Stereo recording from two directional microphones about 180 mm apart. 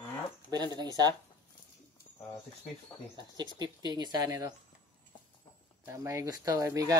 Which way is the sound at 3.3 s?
25° right (ahead or behind).